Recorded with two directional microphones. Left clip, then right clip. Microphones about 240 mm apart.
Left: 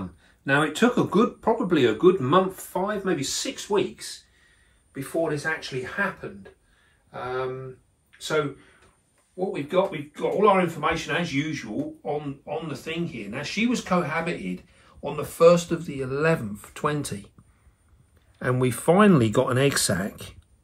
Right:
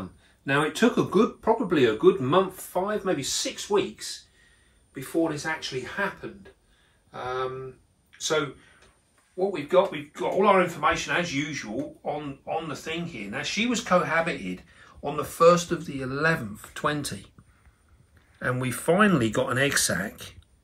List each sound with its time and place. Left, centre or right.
0.5 s speech: centre
9.5 s speech: centre
18.7 s speech: centre